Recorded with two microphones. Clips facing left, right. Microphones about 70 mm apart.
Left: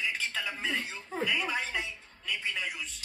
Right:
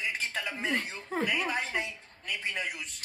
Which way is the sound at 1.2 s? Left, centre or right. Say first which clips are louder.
Even; right.